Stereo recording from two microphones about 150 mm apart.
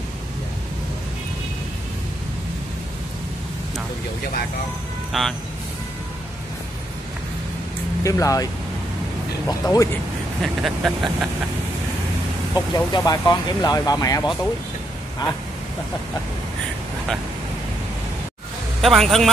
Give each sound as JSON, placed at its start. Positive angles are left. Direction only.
{"t": 5.1, "sound": "speech", "side_deg": 0}
{"t": 8.0, "sound": "speech", "side_deg": 20}
{"t": 9.5, "sound": "speech", "side_deg": 25}
{"t": 10.4, "sound": "speech", "side_deg": 0}
{"t": 12.5, "sound": "speech", "side_deg": 25}
{"t": 18.8, "sound": "speech", "side_deg": 0}